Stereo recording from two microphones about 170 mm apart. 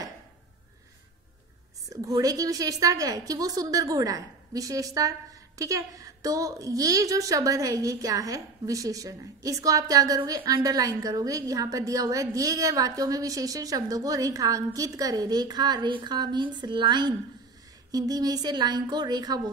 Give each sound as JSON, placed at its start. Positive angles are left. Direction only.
{"t": 1.9, "sound": "a woman's voice", "side_deg": -20}